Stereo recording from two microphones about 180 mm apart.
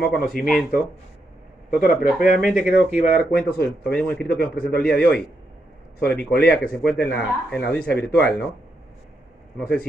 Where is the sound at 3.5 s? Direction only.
65° left (ahead or behind).